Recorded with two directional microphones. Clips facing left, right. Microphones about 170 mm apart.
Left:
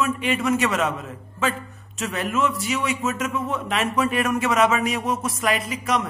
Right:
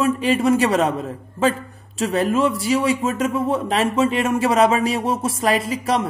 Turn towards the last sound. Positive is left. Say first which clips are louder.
# right 4 dB
turn(degrees=-30)  # may be behind; listen again after turning